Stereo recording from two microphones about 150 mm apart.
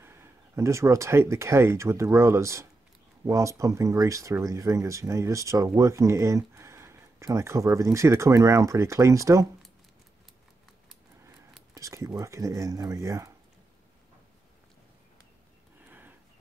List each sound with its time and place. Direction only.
0.0 s speech: 15° right (ahead or behind)
11.7 s speech: 20° right (ahead or behind)